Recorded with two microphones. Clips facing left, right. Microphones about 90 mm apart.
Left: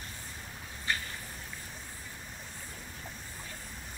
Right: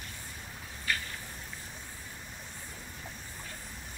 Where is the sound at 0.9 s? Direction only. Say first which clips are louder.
Even; 30° left (ahead or behind).